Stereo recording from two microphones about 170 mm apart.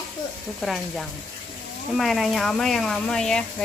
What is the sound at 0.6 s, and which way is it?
Speech, centre (ahead or behind).